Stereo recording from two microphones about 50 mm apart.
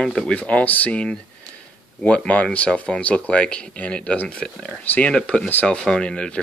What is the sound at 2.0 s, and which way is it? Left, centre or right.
Speech, left.